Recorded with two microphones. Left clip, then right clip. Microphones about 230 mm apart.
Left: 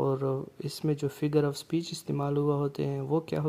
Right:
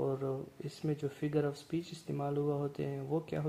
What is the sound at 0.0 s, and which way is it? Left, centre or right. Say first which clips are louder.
Speech: left 6 dB; left.